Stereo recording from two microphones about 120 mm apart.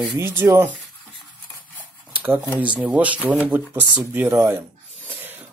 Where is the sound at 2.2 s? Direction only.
15° right (ahead or behind).